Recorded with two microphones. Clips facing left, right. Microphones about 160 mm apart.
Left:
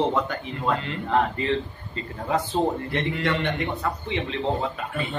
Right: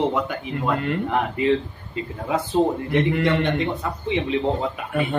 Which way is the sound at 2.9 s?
60° right (ahead or behind).